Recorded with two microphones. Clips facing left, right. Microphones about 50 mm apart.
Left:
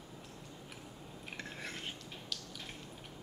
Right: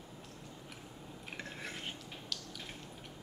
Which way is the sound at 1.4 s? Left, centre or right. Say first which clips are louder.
Even; centre.